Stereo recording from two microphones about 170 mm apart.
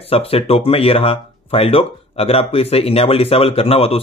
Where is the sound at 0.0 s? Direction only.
35° left (ahead or behind).